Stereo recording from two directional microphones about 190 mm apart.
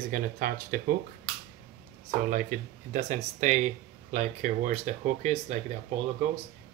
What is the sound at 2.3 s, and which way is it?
Speech, 45° right (ahead or behind).